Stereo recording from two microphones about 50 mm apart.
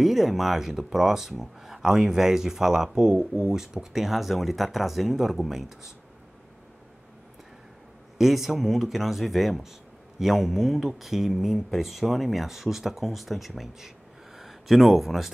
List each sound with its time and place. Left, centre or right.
0.0 s speech: centre
8.2 s speech: centre